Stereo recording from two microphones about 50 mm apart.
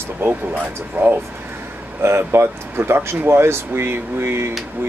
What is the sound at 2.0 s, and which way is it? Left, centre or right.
Speech, right.